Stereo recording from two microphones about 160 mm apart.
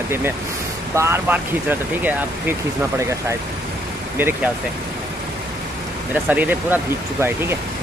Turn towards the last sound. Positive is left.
turn(degrees=-15)  # may be behind; listen again after turning